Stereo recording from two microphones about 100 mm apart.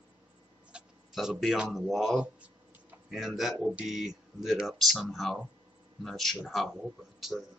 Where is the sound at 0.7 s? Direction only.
5° right (ahead or behind).